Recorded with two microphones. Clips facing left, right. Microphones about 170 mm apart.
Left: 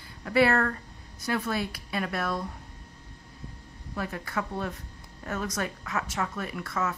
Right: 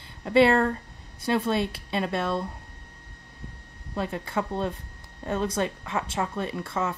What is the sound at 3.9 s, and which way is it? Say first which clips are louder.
Speech: right 4 dB; 25° right (ahead or behind).